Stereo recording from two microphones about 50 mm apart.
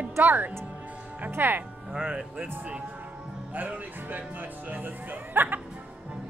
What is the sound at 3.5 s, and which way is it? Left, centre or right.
Speech, right.